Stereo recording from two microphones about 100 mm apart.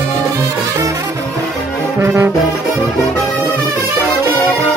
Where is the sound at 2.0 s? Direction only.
25° right (ahead or behind).